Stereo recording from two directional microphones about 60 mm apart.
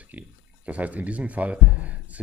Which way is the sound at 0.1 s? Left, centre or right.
Right.